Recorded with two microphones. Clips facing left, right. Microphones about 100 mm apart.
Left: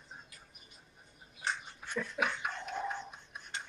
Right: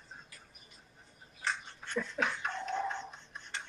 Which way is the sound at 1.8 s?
10° left (ahead or behind).